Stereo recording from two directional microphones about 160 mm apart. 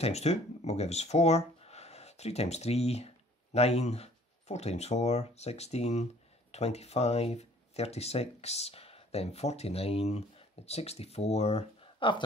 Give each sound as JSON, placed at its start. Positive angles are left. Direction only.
{"t": 0.0, "sound": "speech", "side_deg": 40}